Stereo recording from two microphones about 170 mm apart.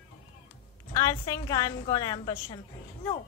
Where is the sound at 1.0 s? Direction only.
20° left (ahead or behind).